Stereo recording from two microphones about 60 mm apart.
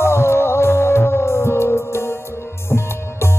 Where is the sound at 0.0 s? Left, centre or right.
Left.